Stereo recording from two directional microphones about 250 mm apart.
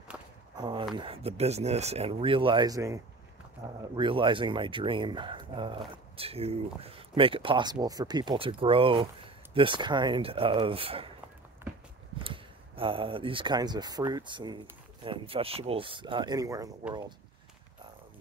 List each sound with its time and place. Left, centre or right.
0.1 s walk: centre
0.6 s speech: centre
12.2 s speech: right